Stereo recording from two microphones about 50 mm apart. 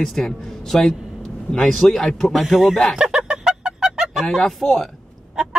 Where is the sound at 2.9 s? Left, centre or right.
Centre.